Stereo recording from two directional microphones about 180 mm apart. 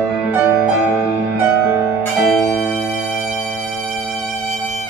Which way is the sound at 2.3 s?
Centre (ahead or behind).